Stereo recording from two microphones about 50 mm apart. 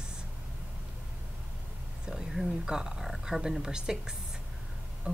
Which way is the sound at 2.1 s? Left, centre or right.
Centre.